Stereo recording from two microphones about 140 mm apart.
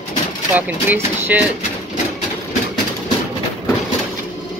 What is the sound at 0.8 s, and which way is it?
Speech, 15° right (ahead or behind).